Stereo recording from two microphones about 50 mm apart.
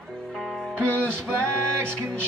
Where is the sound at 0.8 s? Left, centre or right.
Right.